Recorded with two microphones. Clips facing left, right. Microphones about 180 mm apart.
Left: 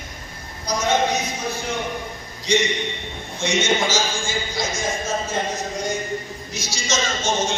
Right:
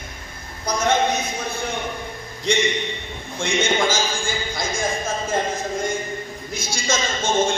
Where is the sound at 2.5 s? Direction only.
55° right (ahead or behind).